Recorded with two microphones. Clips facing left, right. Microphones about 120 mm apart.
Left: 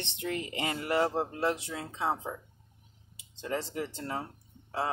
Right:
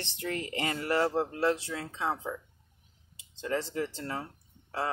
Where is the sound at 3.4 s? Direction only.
20° left (ahead or behind).